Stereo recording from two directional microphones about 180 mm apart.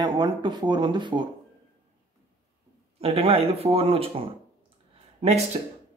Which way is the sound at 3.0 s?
35° right (ahead or behind).